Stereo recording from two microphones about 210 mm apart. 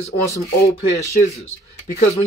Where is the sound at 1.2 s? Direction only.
35° left (ahead or behind).